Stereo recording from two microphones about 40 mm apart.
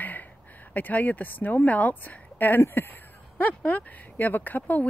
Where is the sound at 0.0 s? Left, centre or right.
Left.